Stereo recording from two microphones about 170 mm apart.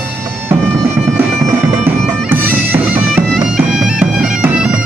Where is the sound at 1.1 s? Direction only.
15° right (ahead or behind).